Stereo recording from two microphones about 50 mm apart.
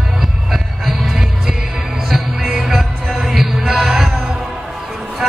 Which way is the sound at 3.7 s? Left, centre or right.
Centre.